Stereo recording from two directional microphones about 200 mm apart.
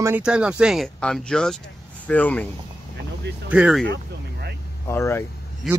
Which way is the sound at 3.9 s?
55° right (ahead or behind).